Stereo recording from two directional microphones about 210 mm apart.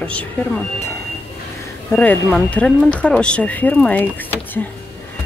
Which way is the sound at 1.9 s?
5° left (ahead or behind).